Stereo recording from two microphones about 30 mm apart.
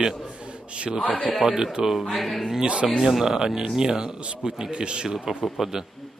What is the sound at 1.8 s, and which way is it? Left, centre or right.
Speech, centre.